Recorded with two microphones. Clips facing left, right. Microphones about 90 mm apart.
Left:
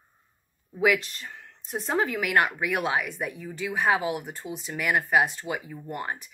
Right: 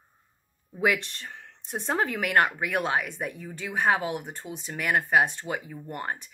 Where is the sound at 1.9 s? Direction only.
50° right (ahead or behind).